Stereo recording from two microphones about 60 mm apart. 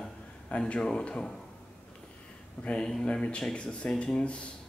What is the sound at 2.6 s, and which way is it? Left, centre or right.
A man's voice, centre.